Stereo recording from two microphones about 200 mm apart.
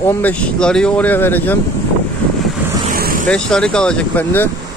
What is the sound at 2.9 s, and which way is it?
Vehicle, 45° right (ahead or behind).